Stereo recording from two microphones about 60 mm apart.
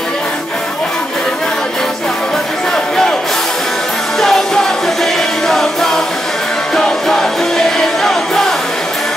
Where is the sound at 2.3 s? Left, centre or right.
Centre.